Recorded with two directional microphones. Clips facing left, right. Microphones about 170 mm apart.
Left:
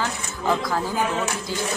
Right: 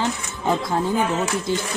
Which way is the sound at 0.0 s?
25° right (ahead or behind).